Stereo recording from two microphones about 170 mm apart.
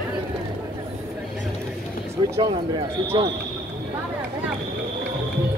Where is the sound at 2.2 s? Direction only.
30° right (ahead or behind).